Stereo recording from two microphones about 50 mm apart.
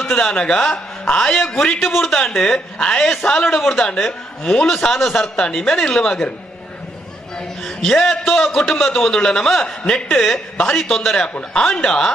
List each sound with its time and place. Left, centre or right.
0.1 s a man's voice: left
1.8 s a man's voice: centre
2.0 s a man's voice: centre
4.6 s a man's voice: centre
5.1 s a man's voice: centre
7.3 s a man's voice: centre
11.5 s a man's voice: centre